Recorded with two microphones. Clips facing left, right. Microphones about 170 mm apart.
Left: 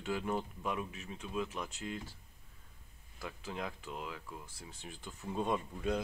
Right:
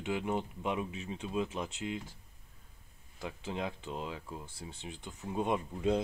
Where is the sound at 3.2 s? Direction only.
25° right (ahead or behind).